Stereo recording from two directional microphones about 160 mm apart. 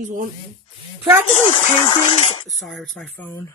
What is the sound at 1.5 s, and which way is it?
Speech, 40° left (ahead or behind).